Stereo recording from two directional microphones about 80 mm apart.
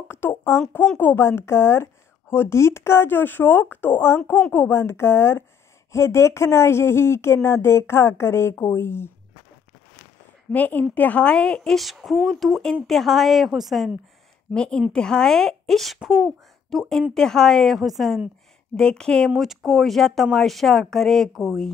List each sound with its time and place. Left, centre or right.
0.1 s speech: left
10.5 s a woman's voice: left; by 13.9 s centre
14.5 s speech: centre